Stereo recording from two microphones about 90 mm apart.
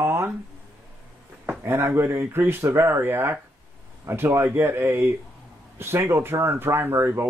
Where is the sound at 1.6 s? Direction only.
25° right (ahead or behind).